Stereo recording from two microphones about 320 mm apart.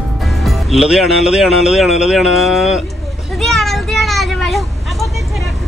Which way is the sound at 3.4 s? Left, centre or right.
Centre.